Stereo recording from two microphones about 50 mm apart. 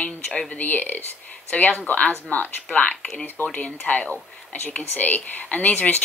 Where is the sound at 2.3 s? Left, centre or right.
Left.